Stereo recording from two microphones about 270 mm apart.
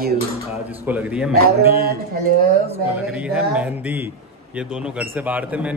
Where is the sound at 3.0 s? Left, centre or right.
Centre.